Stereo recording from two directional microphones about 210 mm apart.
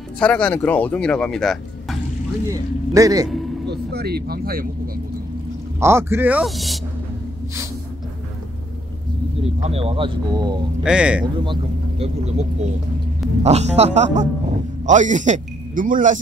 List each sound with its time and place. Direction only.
0.2 s speech: 5° left (ahead or behind)
2.5 s speech: 15° right (ahead or behind)
3.6 s speech: 50° right (ahead or behind)
5.8 s speech: 10° right (ahead or behind)
9.4 s speech: 30° right (ahead or behind)
10.8 s speech: 5° right (ahead or behind)
11.4 s speech: 25° right (ahead or behind)